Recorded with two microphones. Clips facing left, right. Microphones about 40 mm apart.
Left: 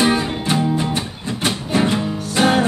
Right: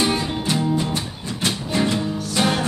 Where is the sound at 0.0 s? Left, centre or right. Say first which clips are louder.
Left 4 dB; left.